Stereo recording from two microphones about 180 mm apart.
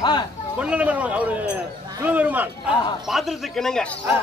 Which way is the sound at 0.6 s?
5° right (ahead or behind).